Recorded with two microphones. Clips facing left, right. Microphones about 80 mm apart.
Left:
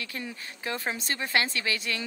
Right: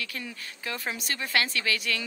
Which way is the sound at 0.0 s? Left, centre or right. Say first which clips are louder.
Even; left.